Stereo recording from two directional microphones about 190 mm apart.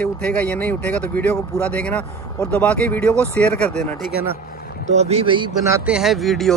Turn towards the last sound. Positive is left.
turn(degrees=0)  # may be behind; listen again after turning